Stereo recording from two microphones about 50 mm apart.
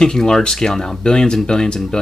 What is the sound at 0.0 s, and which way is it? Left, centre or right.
Speech, centre.